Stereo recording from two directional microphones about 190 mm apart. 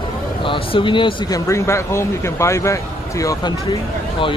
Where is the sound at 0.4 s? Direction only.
25° left (ahead or behind).